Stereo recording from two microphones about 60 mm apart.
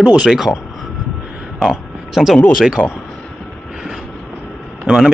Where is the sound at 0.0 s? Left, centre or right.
Centre.